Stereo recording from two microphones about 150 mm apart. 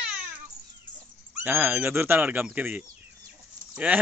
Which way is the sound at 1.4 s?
10° right (ahead or behind).